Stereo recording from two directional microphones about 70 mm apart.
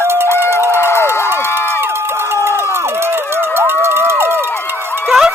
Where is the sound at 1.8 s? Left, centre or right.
Right.